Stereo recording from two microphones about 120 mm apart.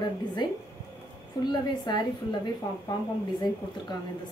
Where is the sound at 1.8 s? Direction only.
35° left (ahead or behind).